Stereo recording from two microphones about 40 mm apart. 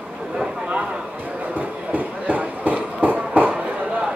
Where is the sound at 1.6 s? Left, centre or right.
Right.